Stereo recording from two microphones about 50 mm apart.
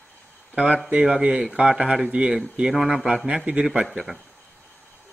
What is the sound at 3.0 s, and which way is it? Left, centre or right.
Speech, centre.